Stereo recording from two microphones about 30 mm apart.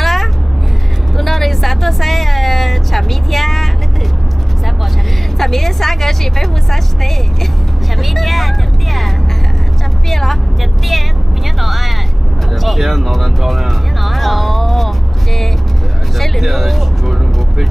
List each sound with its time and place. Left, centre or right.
0.0 s a sound: centre
5.4 s vehicle: centre
8.0 s music: centre
10.0 s vehicle: centre
11.6 s a sound: centre
12.6 s speech: centre
13.4 s vehicle: centre
16.2 s speech: centre
17.0 s vehicle: centre